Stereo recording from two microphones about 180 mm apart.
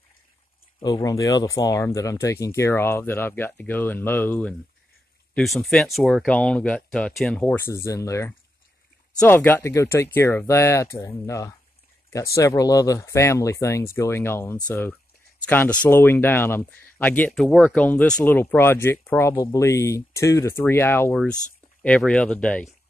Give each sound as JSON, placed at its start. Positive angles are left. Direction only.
{"t": 0.7, "sound": "speech", "side_deg": 25}